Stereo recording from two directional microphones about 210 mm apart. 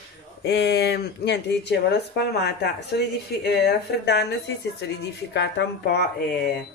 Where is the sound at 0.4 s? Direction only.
55° left (ahead or behind).